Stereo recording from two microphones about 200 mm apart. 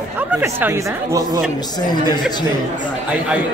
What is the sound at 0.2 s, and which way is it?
A man's voice, 10° right (ahead or behind).